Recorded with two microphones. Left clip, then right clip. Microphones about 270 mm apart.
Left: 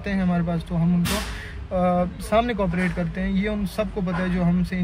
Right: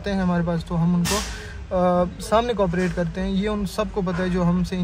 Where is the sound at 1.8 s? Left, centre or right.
Centre.